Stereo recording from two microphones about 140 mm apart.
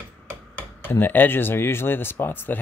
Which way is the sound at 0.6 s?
15° left (ahead or behind).